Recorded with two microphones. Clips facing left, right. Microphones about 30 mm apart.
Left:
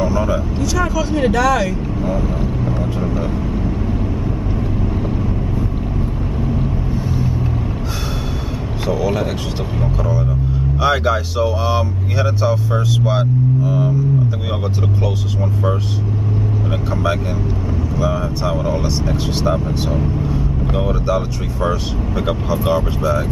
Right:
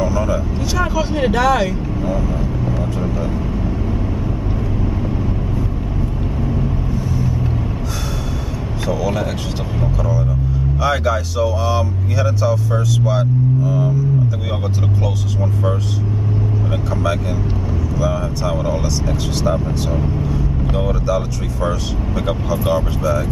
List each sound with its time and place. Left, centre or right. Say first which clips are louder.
0.0 s vehicle: left 1 dB; centre
0.6 s speech: left 1 dB; centre
2.0 s speech: left 1 dB; centre
8.8 s speech: left 1 dB; centre
10.8 s speech: left 2 dB; left
16.9 s speech: left 1 dB; centre
18.5 s speech: even; centre
18.8 s speech: left 1 dB; left
19.9 s speech: left 1 dB; centre
20.3 s vehicle: left 1 dB; centre
21.1 s speech: left 1 dB; centre